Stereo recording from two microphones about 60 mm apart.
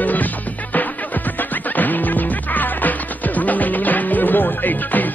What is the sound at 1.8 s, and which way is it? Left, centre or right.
Music, left.